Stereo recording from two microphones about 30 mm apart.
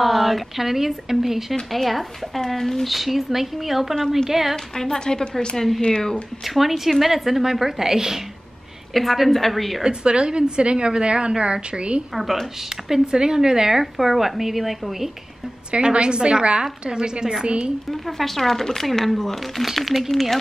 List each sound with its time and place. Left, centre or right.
0.0 s speech: centre
1.5 s speech: centre
2.9 s a woman's voice: centre
4.7 s a woman's voice: left
6.4 s a woman's voice: centre
8.9 s speech: centre
9.8 s a woman's voice: right
12.2 s speech: centre
13.0 s a woman's voice: right
13.9 s a woman's voice: centre
15.7 s a woman's voice: right
18.0 s speech: centre